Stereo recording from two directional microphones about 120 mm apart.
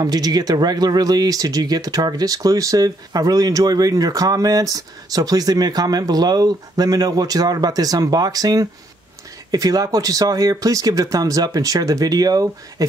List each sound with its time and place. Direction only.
0.0 s speech: 35° right (ahead or behind)